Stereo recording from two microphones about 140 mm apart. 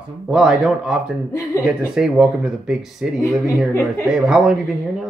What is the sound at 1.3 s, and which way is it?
Speech, 20° left (ahead or behind).